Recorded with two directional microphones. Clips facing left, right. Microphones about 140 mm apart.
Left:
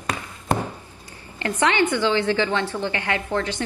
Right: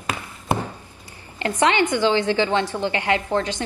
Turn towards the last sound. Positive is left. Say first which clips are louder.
# right 3 dB
turn(degrees=-20)  # may be behind; listen again after turning